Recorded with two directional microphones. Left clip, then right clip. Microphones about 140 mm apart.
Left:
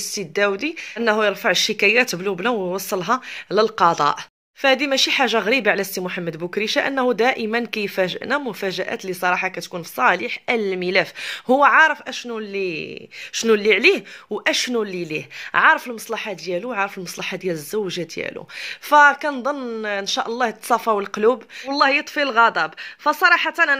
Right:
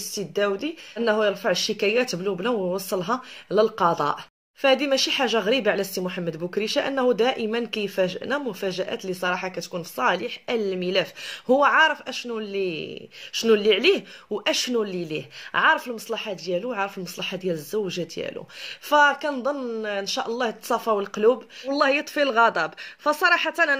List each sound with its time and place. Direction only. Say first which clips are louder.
0.1 s speech: left 4 dB; 20° left (ahead or behind)
21.7 s speech: left 4 dB; 10° left (ahead or behind)